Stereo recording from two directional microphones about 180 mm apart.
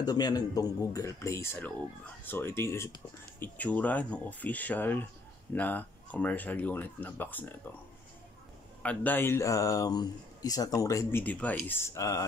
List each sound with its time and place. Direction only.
0.0 s speech: 20° left (ahead or behind)
8.8 s speech: 10° left (ahead or behind)